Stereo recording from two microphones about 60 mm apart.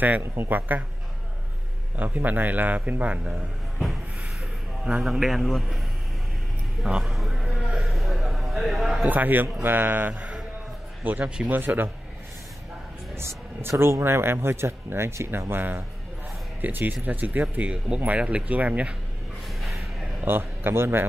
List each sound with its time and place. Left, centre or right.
0.2 s speech: right
2.0 s speech: right
5.0 s a man's voice: centre
7.0 s music: centre
7.7 s a sound: centre
9.1 s speech: right
11.2 s speech: centre
11.5 s speech: right
13.1 s speech: right
17.6 s speech: centre
19.4 s a sound: centre
20.2 s a man's voice: right